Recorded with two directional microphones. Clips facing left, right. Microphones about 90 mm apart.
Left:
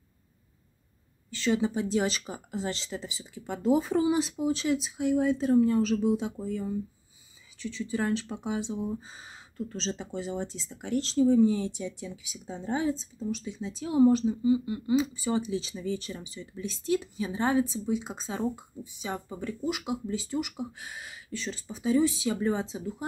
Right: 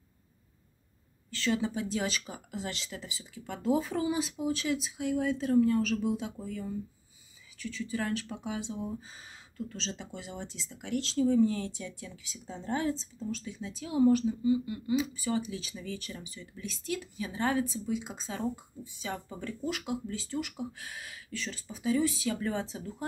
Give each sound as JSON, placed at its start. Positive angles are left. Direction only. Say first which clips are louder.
{"t": 1.3, "sound": "speech", "louder": "left 4 dB", "side_deg": 20}
{"t": 11.1, "sound": "speech", "louder": "left 4 dB", "side_deg": 20}